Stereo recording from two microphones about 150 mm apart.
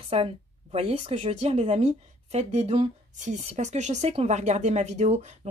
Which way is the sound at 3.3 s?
50° right (ahead or behind).